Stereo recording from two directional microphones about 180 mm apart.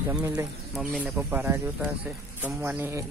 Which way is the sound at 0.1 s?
15° right (ahead or behind).